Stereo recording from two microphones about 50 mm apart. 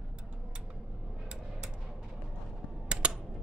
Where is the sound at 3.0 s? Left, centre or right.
Centre.